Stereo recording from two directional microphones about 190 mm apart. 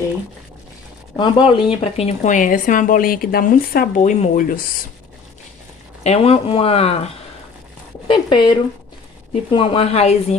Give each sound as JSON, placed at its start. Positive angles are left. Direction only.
{"t": 1.1, "sound": "speech", "side_deg": 25}
{"t": 6.0, "sound": "speech", "side_deg": 30}
{"t": 8.1, "sound": "speech", "side_deg": 25}